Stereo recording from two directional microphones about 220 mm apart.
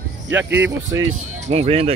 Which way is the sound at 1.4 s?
30° right (ahead or behind).